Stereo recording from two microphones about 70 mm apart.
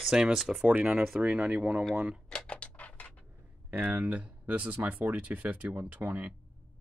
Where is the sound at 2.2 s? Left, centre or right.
Centre.